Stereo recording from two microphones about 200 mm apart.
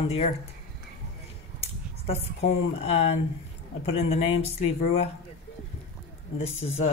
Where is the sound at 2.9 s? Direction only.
30° left (ahead or behind).